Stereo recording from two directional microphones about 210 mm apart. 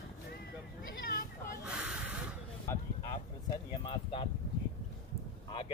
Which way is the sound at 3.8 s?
25° left (ahead or behind).